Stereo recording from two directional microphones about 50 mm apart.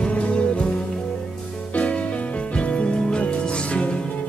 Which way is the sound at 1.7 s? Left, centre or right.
Left.